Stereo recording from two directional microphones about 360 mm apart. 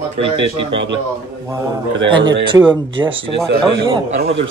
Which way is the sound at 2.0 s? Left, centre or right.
Centre.